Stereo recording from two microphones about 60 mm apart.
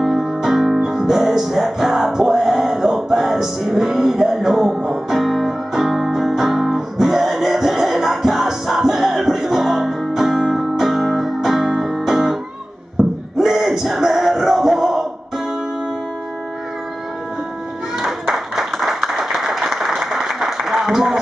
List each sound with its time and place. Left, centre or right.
0.0 s music: centre
13.4 s a sound: centre
17.9 s clapping: centre